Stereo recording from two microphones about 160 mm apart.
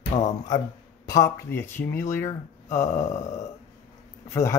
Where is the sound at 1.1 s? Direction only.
20° left (ahead or behind).